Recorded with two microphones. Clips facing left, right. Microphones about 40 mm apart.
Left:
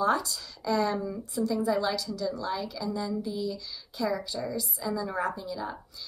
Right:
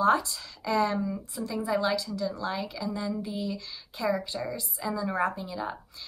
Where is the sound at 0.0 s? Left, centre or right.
Right.